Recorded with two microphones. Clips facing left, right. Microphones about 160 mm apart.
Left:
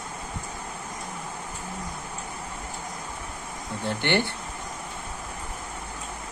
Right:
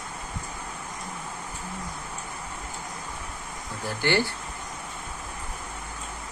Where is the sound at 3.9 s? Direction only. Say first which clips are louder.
Even; 20° left (ahead or behind).